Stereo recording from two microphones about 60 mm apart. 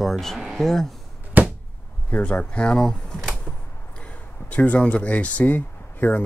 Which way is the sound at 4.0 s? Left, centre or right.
Left.